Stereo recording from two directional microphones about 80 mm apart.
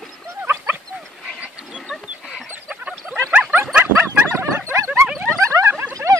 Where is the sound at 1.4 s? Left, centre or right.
Centre.